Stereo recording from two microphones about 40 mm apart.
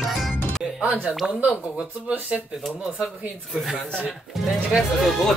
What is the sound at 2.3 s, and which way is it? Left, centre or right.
Speech, right.